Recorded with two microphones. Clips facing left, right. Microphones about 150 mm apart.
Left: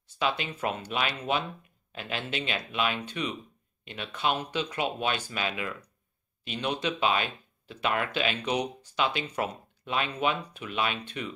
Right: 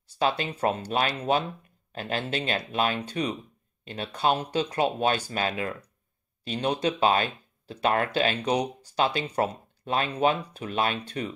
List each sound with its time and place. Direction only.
0.2 s speech: 40° right (ahead or behind)